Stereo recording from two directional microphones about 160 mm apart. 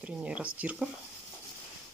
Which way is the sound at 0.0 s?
10° right (ahead or behind).